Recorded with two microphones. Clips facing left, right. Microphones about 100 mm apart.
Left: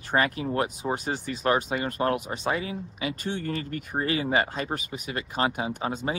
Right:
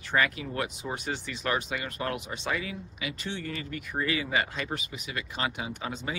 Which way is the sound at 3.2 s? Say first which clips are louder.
Left 4 dB; 45° left (ahead or behind).